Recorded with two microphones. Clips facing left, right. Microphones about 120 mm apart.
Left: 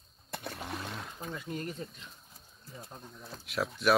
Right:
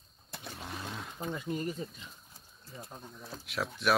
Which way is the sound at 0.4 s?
Centre (ahead or behind).